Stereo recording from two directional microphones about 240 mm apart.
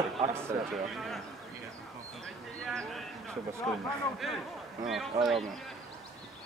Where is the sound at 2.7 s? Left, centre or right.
Centre.